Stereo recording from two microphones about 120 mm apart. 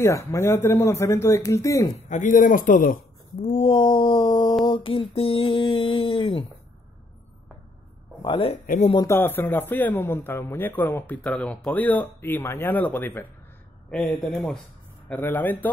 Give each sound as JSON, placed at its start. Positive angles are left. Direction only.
{"t": 0.0, "sound": "speech", "side_deg": 25}
{"t": 2.0, "sound": "speech", "side_deg": 90}
{"t": 3.6, "sound": "a sound", "side_deg": 45}
{"t": 8.2, "sound": "a sound", "side_deg": 50}
{"t": 9.0, "sound": "a man's voice", "side_deg": 20}
{"t": 13.8, "sound": "speech", "side_deg": 5}
{"t": 15.1, "sound": "a man's voice", "side_deg": 20}